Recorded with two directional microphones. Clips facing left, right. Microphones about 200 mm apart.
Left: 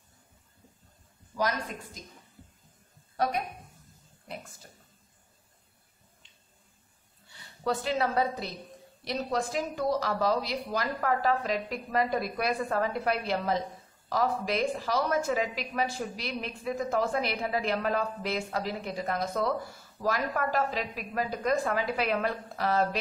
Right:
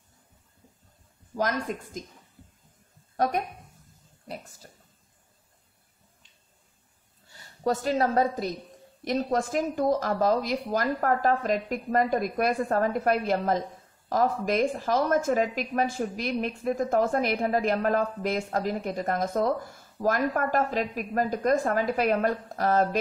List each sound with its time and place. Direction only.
3.2 s a woman's voice: 45° right (ahead or behind)
7.3 s a woman's voice: 45° right (ahead or behind)